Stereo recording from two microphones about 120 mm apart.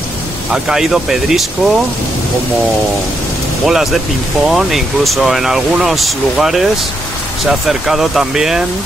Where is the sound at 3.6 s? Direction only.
Centre (ahead or behind).